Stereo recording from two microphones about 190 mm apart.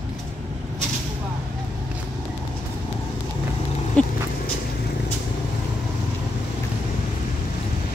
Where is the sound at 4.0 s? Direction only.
5° left (ahead or behind).